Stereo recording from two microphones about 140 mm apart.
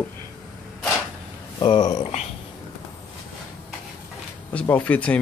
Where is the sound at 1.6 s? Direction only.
30° left (ahead or behind).